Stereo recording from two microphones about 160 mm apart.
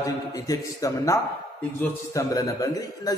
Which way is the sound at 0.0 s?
20° left (ahead or behind).